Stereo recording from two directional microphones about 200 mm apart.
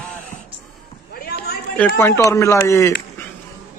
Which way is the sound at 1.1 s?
50° left (ahead or behind).